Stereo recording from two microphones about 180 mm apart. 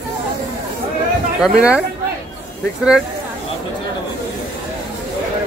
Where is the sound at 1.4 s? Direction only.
5° right (ahead or behind).